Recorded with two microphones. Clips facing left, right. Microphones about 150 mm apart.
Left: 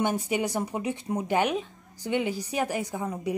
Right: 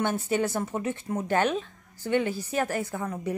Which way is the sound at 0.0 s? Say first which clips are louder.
Even; 15° left (ahead or behind).